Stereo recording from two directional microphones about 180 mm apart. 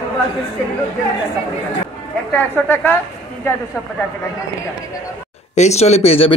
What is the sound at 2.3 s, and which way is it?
Speech, 10° left (ahead or behind).